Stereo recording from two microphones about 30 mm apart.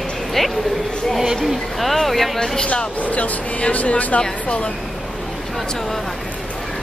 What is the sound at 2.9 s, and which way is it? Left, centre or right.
Speech, left.